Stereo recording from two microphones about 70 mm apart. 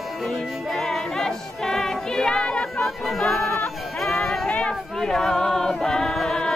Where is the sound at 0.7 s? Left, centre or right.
Centre.